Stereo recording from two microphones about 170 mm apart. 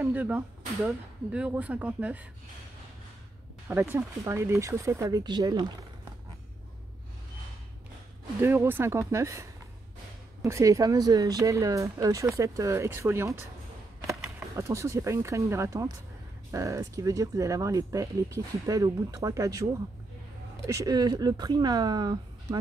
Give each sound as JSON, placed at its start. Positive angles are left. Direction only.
{"t": 0.0, "sound": "speech", "side_deg": -10}
{"t": 3.6, "sound": "speech", "side_deg": -10}
{"t": 8.4, "sound": "speech", "side_deg": -15}
{"t": 14.5, "sound": "speech", "side_deg": -15}